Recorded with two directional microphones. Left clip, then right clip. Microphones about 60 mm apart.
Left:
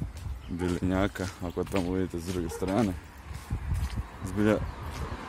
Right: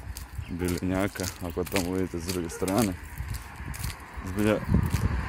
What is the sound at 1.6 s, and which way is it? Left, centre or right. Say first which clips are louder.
Speech: right 1 dB; centre.